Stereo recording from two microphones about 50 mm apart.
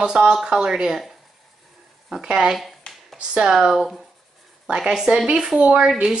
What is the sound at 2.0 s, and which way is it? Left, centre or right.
Speech, centre.